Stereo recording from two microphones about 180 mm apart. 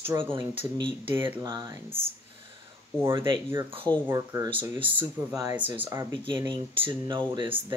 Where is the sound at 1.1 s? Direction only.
10° right (ahead or behind).